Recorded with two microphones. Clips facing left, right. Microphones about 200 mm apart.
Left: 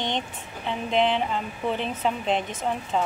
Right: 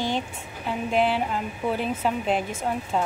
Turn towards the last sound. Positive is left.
turn(degrees=-10)  # may be behind; listen again after turning